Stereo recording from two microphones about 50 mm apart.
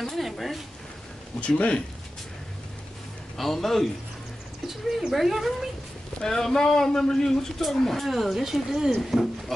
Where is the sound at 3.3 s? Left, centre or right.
Centre.